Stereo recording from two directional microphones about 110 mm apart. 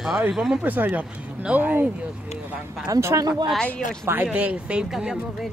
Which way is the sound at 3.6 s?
10° left (ahead or behind).